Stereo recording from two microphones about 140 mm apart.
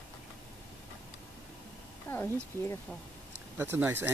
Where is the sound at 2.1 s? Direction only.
15° left (ahead or behind).